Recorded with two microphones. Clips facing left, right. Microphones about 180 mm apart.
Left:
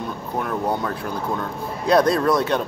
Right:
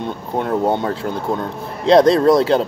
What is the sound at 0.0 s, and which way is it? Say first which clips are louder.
Speech: right 4 dB; 25° right (ahead or behind).